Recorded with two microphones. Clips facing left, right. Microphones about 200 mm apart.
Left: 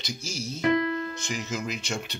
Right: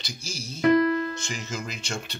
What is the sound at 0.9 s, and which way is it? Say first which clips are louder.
Piano: right 5 dB; 65° right (ahead or behind).